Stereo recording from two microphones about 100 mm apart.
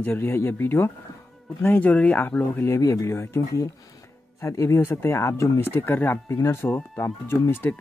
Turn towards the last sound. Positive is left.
turn(degrees=25)  # may be behind; listen again after turning